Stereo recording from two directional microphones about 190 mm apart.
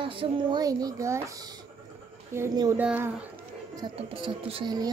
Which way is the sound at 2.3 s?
15° right (ahead or behind).